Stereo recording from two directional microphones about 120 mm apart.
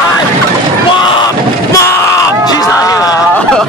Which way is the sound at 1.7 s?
25° left (ahead or behind).